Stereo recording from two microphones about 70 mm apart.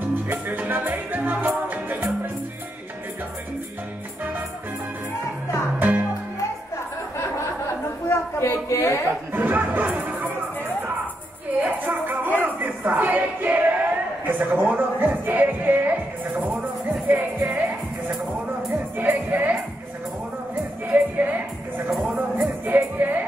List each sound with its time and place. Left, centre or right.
0.1 s music: right
5.8 s music: right
7.2 s a sound: left
9.3 s speech: right
11.6 s music: right
12.4 s a sound: right
14.2 s music: right
20.8 s music: right
22.0 s music: centre
22.9 s music: right